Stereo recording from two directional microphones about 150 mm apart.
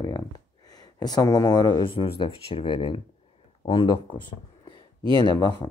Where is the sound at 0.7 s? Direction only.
25° left (ahead or behind).